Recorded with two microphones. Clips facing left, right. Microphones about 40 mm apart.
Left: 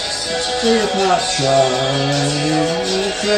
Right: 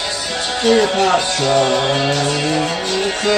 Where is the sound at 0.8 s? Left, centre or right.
Right.